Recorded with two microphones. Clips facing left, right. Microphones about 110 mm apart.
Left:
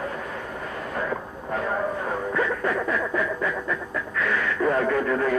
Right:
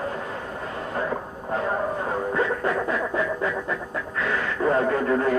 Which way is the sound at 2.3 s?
30° right (ahead or behind).